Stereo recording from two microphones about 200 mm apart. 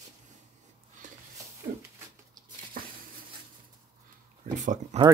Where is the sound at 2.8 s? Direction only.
45° right (ahead or behind).